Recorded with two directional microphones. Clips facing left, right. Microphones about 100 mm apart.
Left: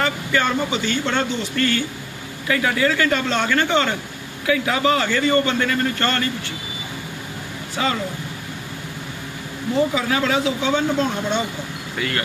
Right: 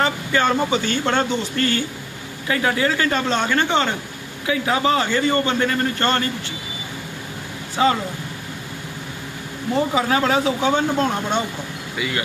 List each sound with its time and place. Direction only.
0.0 s a man's voice: 30° right (ahead or behind)
7.8 s speech: 30° right (ahead or behind)
9.9 s speech: 35° right (ahead or behind)